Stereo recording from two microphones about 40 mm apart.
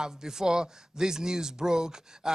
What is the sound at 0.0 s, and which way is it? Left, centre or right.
A man's voice, centre.